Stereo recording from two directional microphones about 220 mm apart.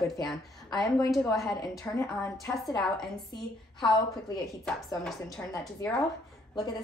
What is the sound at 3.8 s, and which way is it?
Speech, 20° left (ahead or behind).